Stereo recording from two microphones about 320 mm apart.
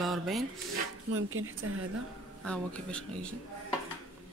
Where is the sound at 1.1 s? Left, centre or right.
Right.